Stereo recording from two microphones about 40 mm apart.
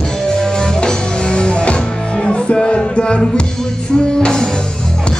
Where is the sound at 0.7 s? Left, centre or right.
Left.